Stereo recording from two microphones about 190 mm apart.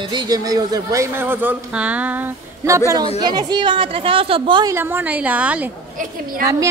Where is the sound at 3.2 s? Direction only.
20° right (ahead or behind).